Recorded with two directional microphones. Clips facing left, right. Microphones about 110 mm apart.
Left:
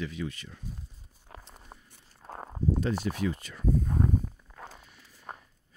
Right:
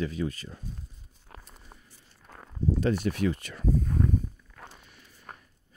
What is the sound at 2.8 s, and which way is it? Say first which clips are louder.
Speech: right 3 dB; 65° right (ahead or behind).